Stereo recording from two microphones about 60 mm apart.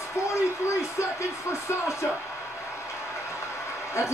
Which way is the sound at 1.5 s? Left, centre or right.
Left.